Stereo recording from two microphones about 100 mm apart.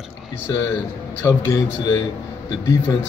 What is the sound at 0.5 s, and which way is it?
A man's voice, 25° left (ahead or behind).